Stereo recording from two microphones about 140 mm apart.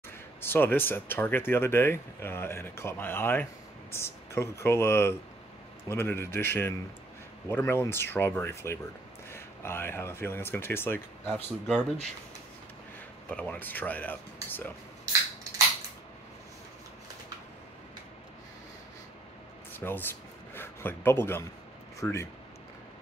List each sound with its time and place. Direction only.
0.4 s speech: 15° left (ahead or behind)
11.6 s speech: centre (ahead or behind)
13.3 s speech: 10° left (ahead or behind)
19.7 s a man's voice: 15° left (ahead or behind)